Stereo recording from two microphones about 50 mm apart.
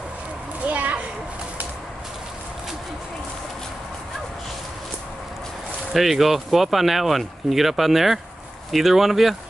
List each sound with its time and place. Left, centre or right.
0.7 s children playing: right
5.9 s speech: centre